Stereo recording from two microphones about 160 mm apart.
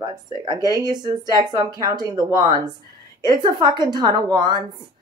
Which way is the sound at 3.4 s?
25° right (ahead or behind).